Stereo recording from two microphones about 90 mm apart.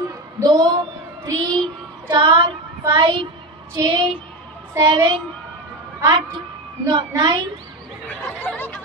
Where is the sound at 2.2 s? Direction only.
65° right (ahead or behind).